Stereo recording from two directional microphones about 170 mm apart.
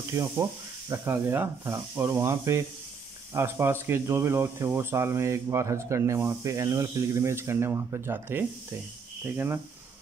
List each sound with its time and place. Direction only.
0.1 s speech: 20° right (ahead or behind)